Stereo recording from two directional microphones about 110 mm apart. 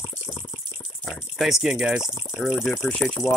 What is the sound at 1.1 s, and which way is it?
Speech, centre (ahead or behind).